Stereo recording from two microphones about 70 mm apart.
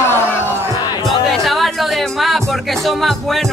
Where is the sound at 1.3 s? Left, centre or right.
Centre.